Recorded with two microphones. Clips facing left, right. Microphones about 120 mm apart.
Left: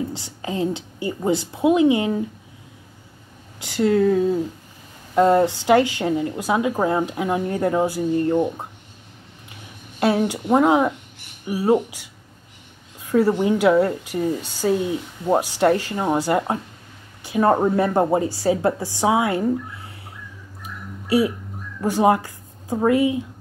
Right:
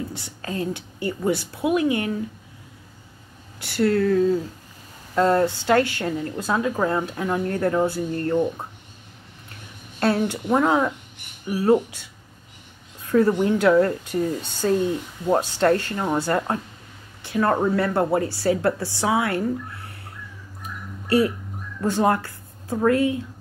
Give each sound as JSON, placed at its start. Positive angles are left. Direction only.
{"t": 0.1, "sound": "a woman's voice", "side_deg": 20}
{"t": 3.5, "sound": "speech", "side_deg": 15}
{"t": 9.9, "sound": "speech", "side_deg": 15}
{"t": 13.1, "sound": "speech", "side_deg": 10}
{"t": 21.8, "sound": "a woman's voice", "side_deg": 15}